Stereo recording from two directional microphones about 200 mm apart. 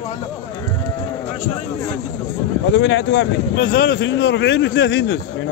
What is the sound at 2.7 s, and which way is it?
A man's voice, 65° left (ahead or behind).